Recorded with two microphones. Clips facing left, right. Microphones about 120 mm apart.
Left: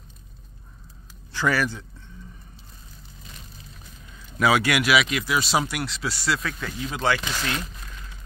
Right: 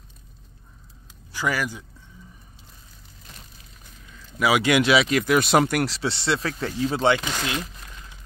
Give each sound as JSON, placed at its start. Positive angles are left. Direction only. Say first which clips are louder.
{"t": 1.3, "sound": "speech", "louder": "left 2 dB", "side_deg": -15}
{"t": 4.4, "sound": "speech", "louder": "right 1 dB", "side_deg": -15}
{"t": 5.1, "sound": "speech", "louder": "right 5 dB", "side_deg": -50}
{"t": 5.9, "sound": "speech", "louder": "right 2 dB", "side_deg": -30}